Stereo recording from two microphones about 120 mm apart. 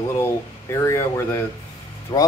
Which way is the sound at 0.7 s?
25° left (ahead or behind).